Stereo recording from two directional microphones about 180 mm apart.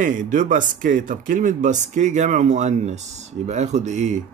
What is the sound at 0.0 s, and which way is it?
Speech, 45° right (ahead or behind).